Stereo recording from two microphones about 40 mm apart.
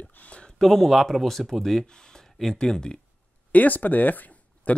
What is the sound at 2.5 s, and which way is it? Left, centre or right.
Speech, centre.